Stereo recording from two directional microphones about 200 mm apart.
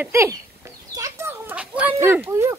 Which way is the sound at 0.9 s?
15° right (ahead or behind).